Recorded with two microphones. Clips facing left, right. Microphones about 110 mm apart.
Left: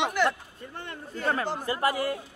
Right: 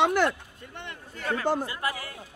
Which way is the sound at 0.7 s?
35° left (ahead or behind).